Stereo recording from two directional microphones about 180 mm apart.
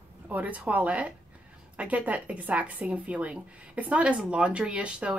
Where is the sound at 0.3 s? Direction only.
10° right (ahead or behind).